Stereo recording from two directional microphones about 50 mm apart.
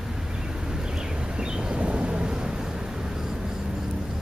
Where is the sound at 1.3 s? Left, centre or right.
Centre.